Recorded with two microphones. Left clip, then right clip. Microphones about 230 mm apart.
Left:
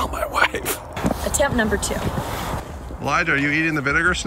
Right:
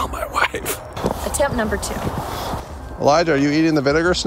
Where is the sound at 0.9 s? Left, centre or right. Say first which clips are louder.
Right 2 dB; centre.